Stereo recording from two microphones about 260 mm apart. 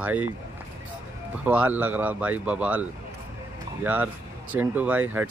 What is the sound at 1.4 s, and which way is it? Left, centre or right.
Speech, centre.